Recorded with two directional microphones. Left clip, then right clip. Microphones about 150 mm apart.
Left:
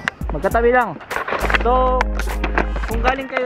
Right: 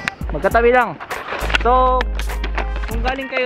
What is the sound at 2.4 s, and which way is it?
Music, 20° left (ahead or behind).